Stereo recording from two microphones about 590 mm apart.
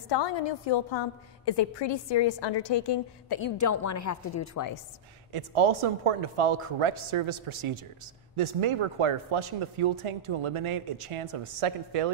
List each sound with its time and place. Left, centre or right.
0.1 s a woman's voice: left
5.3 s speech: right